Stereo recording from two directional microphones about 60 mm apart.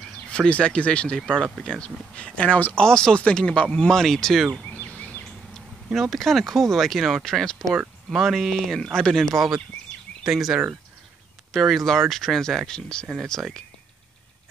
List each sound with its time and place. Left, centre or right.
0.3 s speech: centre
4.8 s a sound: left
5.9 s speech: centre
10.2 s speech: centre
13.3 s speech: centre